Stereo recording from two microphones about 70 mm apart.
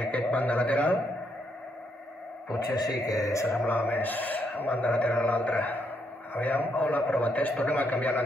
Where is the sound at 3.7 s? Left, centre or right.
Left.